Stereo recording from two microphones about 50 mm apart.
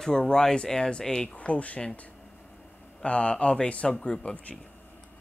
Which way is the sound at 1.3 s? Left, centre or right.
Left.